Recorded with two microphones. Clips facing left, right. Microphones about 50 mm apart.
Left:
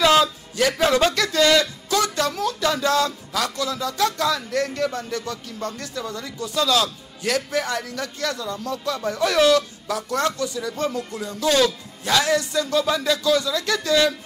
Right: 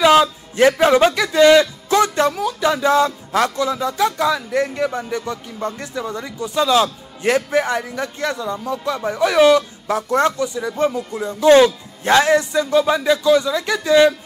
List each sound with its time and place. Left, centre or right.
0.0 s a man's voice: right
3.3 s a man's voice: right